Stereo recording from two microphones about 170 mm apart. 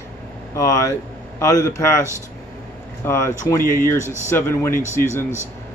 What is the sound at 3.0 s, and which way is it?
Speech, 15° left (ahead or behind).